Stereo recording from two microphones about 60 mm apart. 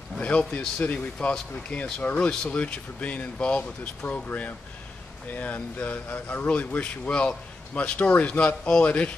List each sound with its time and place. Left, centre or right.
0.2 s speech: left